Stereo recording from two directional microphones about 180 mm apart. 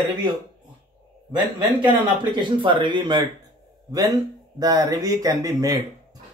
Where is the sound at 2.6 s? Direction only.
25° right (ahead or behind).